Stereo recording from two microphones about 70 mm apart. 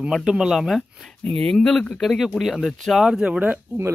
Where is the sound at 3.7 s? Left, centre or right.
Right.